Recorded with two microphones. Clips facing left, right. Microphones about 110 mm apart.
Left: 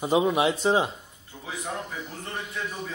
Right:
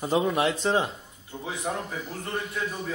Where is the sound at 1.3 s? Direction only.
25° right (ahead or behind).